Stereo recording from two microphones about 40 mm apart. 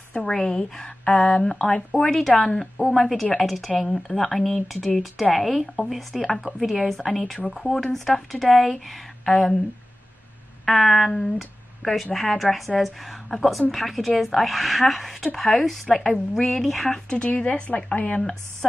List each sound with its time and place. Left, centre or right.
0.2 s a woman's voice: centre
1.9 s a woman's voice: centre
6.4 s a woman's voice: centre
10.6 s a sound: centre
11.1 s a woman's voice: centre
11.3 s speech: centre
17.3 s speech: left